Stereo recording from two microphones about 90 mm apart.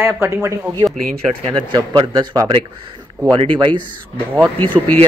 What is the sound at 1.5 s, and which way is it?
Speech, 60° right (ahead or behind).